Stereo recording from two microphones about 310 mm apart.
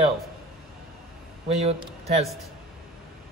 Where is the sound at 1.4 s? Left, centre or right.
Centre.